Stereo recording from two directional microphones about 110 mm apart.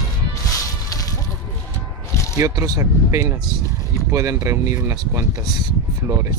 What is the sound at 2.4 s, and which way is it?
Speech, 25° right (ahead or behind).